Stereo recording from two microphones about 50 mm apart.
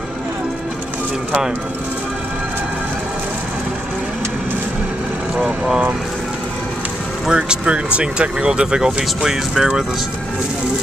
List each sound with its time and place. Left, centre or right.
5.3 s vehicle: centre
7.2 s speech: centre